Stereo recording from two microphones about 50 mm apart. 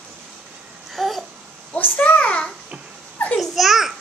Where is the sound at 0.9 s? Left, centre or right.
Centre.